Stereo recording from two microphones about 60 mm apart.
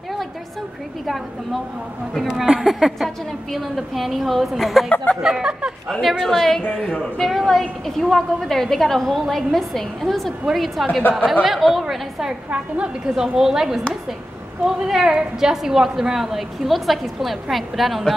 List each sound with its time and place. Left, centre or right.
1.0 s a woman's voice: centre
5.2 s a woman's voice: centre
5.9 s a woman's voice: centre
11.0 s speech: left
11.4 s a woman's voice: centre
12.4 s a woman's voice: centre
14.9 s a woman's voice: centre